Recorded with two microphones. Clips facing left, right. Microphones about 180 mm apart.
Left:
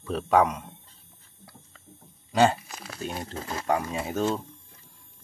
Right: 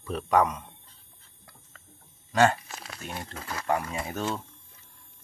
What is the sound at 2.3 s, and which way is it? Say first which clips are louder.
Speech: left 1 dB; 15° left (ahead or behind).